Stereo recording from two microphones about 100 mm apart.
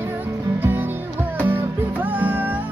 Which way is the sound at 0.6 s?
20° right (ahead or behind).